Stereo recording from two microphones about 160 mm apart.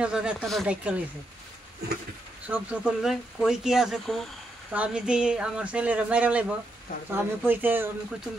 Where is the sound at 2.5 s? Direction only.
10° right (ahead or behind).